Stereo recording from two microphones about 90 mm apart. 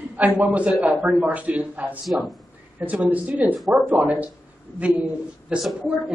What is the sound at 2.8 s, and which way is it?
A man's voice, 15° right (ahead or behind).